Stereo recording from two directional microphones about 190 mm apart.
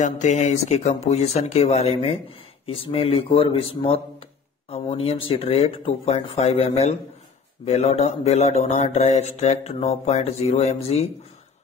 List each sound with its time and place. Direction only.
0.0 s speech: 40° left (ahead or behind)